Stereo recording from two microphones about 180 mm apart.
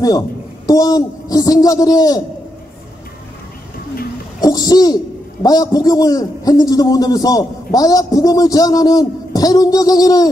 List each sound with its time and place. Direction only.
0.7 s a man's voice: 20° left (ahead or behind)
4.4 s a man's voice: 20° left (ahead or behind)